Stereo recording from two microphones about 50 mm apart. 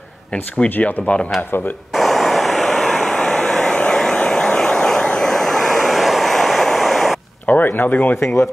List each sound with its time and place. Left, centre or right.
0.7 s speech: left
2.0 s vehicle: centre
7.4 s a sound: left